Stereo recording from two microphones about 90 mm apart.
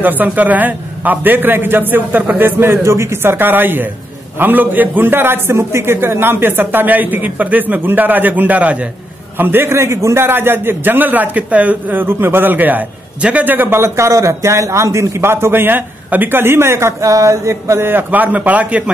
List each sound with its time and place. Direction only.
0.0 s a man's voice: 20° right (ahead or behind)